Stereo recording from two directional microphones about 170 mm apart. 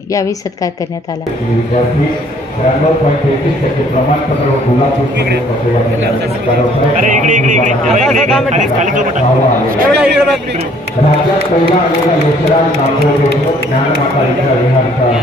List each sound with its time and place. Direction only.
7.1 s speech: 50° right (ahead or behind)
9.8 s a man's voice: 70° right (ahead or behind)